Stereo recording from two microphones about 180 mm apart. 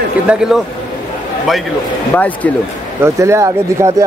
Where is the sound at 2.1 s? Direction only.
10° left (ahead or behind).